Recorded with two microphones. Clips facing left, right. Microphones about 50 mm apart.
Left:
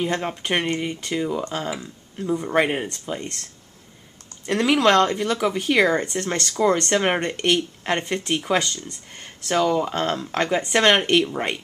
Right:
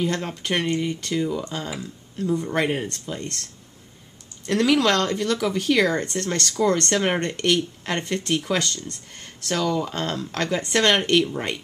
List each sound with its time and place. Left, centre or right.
0.0 s speech: centre
4.5 s speech: centre